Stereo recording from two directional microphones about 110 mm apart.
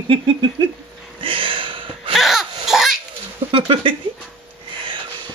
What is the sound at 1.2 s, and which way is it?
Gasp, 50° right (ahead or behind).